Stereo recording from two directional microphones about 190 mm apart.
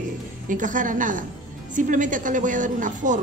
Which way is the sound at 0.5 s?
45° right (ahead or behind).